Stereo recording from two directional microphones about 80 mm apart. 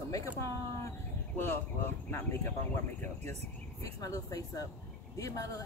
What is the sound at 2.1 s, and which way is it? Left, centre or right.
Speech, left.